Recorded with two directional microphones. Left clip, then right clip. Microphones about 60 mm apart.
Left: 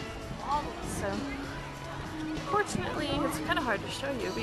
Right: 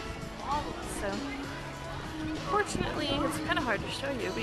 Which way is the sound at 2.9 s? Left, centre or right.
Centre.